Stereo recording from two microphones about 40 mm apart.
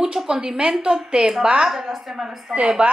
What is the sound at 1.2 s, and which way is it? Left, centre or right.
Speech, centre.